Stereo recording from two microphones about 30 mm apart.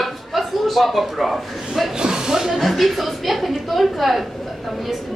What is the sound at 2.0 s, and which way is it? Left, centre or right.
Chuckle, right.